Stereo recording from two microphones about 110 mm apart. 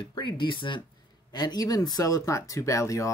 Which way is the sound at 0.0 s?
45° left (ahead or behind).